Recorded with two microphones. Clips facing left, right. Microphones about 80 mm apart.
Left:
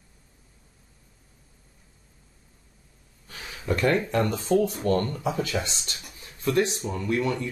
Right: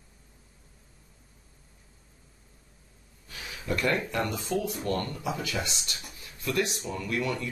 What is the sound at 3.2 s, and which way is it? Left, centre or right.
Speech, left.